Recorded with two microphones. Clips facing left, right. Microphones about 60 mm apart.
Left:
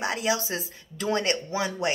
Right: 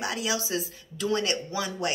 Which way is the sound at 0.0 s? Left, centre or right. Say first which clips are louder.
Left 3 dB; left.